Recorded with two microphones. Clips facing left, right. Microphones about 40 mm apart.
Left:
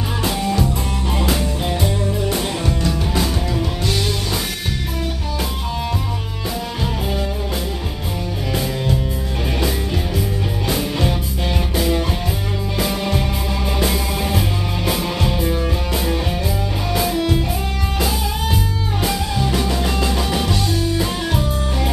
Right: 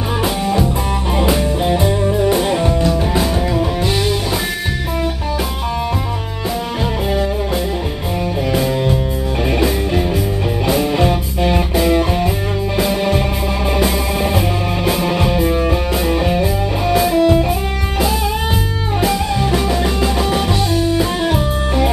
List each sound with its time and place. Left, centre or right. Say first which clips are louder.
0.2 s music: right 2 dB; centre
10.7 s music: right 6 dB; centre
13.7 s music: right 3 dB; centre
18.9 s music: right 5 dB; centre